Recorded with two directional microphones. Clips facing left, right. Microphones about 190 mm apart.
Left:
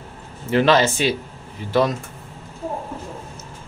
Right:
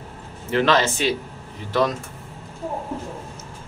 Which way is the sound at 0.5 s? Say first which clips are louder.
Left 3 dB; 10° left (ahead or behind).